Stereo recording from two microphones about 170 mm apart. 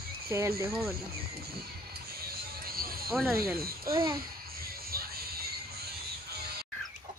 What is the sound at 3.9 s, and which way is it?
Speech, 20° right (ahead or behind).